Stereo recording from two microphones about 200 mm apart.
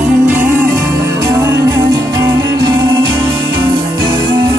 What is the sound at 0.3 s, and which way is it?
Music, 10° right (ahead or behind).